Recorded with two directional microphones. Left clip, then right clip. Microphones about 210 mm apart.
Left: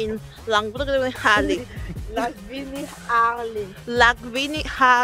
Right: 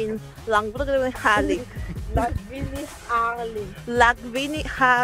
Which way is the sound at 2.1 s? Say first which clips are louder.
Even; 10° left (ahead or behind).